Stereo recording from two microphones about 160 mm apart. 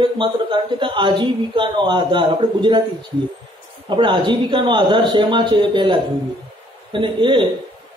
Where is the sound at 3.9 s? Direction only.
30° right (ahead or behind).